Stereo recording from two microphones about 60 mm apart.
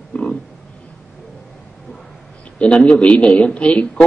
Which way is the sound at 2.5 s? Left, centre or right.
Centre.